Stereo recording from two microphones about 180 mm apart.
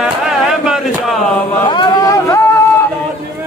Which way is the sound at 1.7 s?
25° left (ahead or behind).